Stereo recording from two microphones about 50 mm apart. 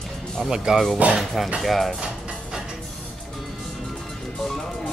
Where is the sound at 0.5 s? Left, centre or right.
Centre.